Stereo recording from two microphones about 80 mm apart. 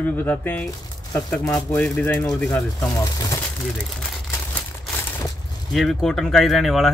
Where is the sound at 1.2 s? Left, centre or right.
Centre.